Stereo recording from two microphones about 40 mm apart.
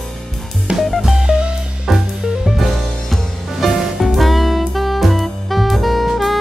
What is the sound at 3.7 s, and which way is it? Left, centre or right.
Music, centre.